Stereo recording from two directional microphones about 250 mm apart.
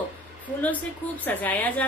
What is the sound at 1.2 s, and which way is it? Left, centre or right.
Speech, centre.